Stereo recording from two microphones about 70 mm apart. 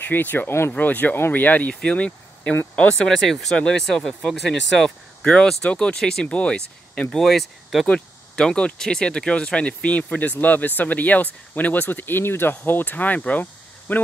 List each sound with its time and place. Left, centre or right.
0.0 s speech: left
0.7 s speech: left
3.1 s speech: centre
3.5 s speech: centre